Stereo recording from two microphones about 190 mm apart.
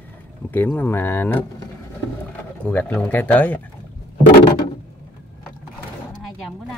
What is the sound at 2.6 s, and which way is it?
Speech, 10° left (ahead or behind).